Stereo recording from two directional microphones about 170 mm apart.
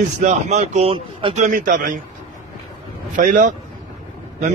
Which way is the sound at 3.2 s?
50° right (ahead or behind).